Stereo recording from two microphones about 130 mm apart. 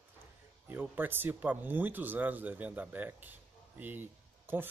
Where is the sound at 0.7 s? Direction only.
15° right (ahead or behind).